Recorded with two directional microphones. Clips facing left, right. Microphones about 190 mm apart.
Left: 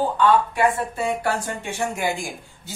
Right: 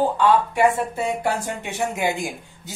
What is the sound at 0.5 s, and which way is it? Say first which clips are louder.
Speech: right 2 dB; 20° right (ahead or behind).